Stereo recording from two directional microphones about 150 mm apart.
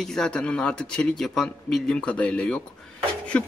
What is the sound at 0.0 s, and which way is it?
A man's voice, 5° left (ahead or behind).